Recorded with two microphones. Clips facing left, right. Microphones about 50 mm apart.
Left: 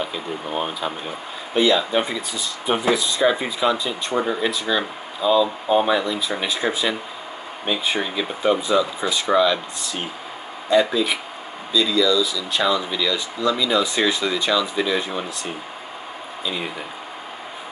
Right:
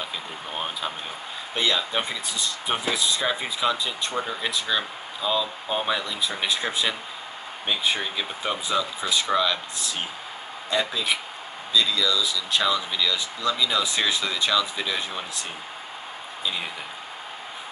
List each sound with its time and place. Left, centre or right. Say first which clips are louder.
0.0 s speech: left 6 dB; centre
4.1 s speech: left 10 dB; left
4.4 s speech: left 5 dB; centre
16.4 s speech: left 3 dB; centre